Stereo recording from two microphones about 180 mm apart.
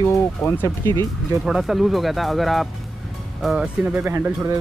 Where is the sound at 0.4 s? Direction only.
10° left (ahead or behind).